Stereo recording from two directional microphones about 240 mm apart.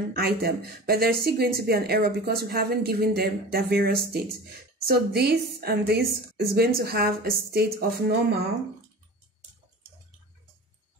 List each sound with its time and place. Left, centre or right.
0.1 s speech: right